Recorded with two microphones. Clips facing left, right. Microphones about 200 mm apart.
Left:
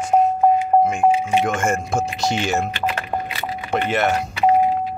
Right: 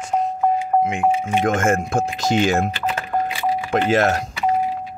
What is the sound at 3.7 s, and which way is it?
Speech, 90° right.